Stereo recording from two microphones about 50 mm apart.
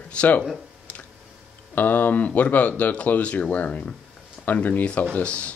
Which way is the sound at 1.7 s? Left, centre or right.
Left.